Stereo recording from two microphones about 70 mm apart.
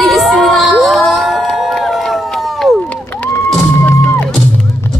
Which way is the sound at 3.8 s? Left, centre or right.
Left.